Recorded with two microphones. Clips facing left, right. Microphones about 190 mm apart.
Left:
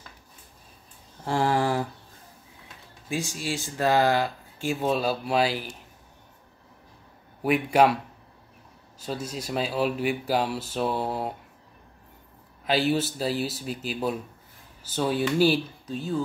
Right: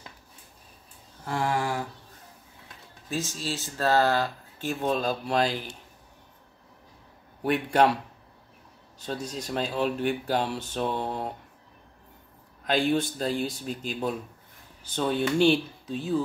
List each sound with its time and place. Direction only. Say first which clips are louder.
1.2 s a sound: left 4 dB; 30° left (ahead or behind)
3.1 s speech: left 2 dB; 15° left (ahead or behind)
7.4 s speech: left 2 dB; 10° left (ahead or behind)
12.6 s speech: left 1 dB; 5° left (ahead or behind)